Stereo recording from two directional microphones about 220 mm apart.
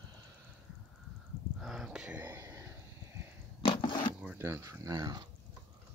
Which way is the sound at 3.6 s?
20° left (ahead or behind).